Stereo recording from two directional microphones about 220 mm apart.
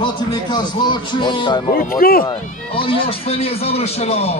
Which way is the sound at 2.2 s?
25° left (ahead or behind).